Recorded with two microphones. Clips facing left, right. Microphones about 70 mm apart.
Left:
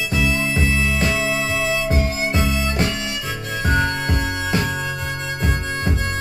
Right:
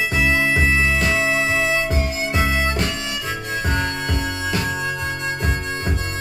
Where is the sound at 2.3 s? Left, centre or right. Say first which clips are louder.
Right 5 dB; right.